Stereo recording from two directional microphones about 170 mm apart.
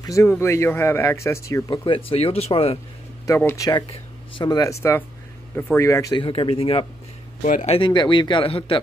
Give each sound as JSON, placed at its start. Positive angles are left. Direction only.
{"t": 0.0, "sound": "speech", "side_deg": 15}
{"t": 1.9, "sound": "speech", "side_deg": 30}
{"t": 3.3, "sound": "speech", "side_deg": 15}
{"t": 7.4, "sound": "speech", "side_deg": 50}
{"t": 7.7, "sound": "speech", "side_deg": 30}